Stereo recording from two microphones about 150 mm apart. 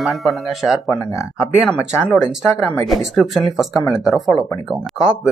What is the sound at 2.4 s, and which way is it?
Speech, 15° left (ahead or behind).